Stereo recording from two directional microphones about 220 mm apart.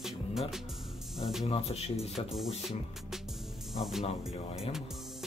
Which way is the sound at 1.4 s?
30° left (ahead or behind).